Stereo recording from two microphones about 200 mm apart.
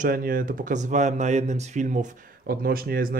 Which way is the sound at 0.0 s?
45° right (ahead or behind).